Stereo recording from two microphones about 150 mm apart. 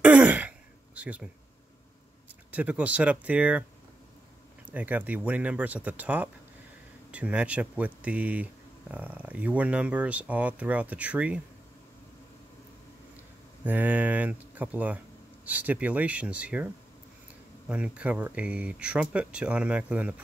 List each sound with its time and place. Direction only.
0.0 s throat clearing: 10° right (ahead or behind)
2.5 s speech: 10° right (ahead or behind)
4.6 s speech: 10° right (ahead or behind)
13.7 s speech: 10° right (ahead or behind)